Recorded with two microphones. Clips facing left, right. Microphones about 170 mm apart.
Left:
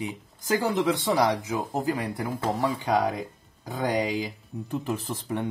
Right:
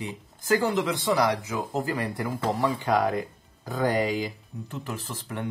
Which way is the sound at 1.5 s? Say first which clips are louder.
Left 1 dB; 20° left (ahead or behind).